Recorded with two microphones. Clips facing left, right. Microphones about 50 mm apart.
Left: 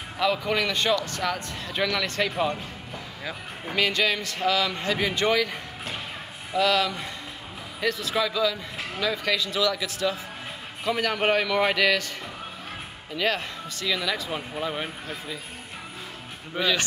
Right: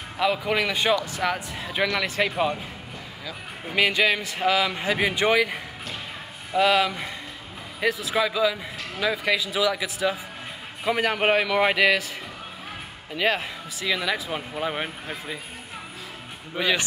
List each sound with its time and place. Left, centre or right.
0.2 s a man's voice: centre
3.7 s a man's voice: centre
13.1 s a man's voice: centre
16.5 s speech: centre